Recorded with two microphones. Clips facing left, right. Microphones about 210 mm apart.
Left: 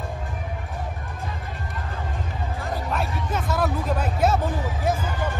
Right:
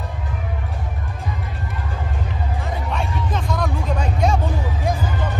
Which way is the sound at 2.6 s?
Centre (ahead or behind).